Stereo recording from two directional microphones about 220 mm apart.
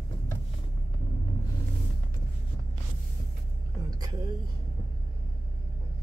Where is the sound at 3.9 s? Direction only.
15° right (ahead or behind).